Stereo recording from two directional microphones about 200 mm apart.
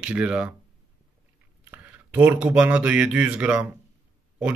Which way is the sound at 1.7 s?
10° right (ahead or behind).